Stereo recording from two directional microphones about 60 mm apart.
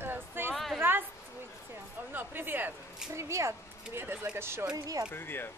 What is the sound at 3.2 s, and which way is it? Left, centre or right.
Speech, right.